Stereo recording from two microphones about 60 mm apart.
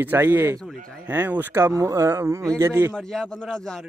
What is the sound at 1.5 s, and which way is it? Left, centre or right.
A man's voice, right.